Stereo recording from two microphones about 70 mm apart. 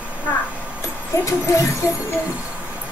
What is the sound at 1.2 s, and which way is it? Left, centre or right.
Speech, left.